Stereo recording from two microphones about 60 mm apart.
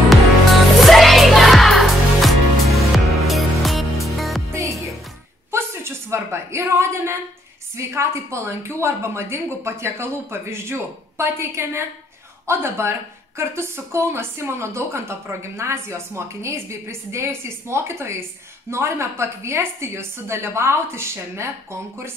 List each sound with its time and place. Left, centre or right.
0.8 s music: centre
4.5 s music: right
5.5 s a sound: right
7.7 s speech: right